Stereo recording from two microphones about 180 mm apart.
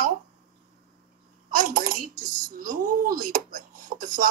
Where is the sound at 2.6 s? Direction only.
50° right (ahead or behind).